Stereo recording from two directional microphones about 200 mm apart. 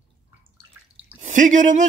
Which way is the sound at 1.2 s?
40° right (ahead or behind).